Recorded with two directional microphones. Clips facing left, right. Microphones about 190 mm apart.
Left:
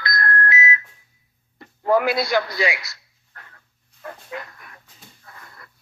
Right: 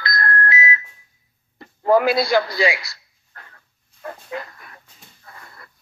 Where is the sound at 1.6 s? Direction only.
30° right (ahead or behind).